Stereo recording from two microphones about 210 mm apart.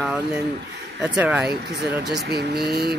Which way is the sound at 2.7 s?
50° right (ahead or behind).